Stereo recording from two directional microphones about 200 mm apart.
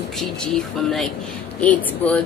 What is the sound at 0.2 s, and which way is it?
A woman's voice, centre (ahead or behind).